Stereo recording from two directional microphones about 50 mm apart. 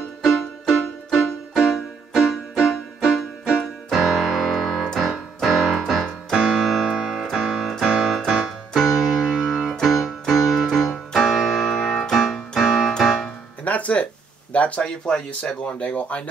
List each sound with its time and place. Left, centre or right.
1.6 s music: centre
5.0 s piano: centre
6.3 s music: centre
7.8 s keyboard: centre
8.3 s music: centre
9.4 s keyboard: centre
10.9 s music: centre
12.5 s keyboard: centre
13.7 s music: left
14.5 s speech: left
14.8 s speech: centre
15.8 s speech: left